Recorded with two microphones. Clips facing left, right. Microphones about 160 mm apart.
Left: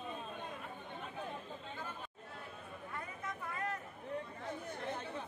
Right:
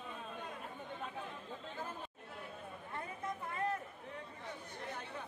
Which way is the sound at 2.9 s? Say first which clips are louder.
Right 3 dB; 25° right (ahead or behind).